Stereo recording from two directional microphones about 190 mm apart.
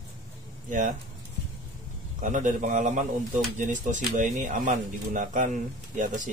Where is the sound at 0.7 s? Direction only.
40° right (ahead or behind).